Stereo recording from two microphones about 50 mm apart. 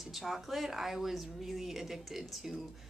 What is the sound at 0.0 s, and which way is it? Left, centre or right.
A woman's voice, centre.